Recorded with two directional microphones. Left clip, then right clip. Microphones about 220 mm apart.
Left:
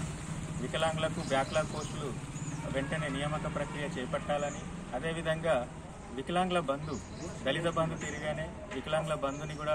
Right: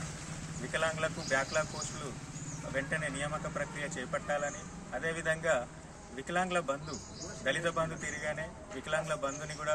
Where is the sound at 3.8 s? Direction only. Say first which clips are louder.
Left 1 dB; 5° right (ahead or behind).